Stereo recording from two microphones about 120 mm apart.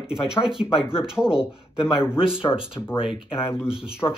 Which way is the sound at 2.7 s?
45° left (ahead or behind).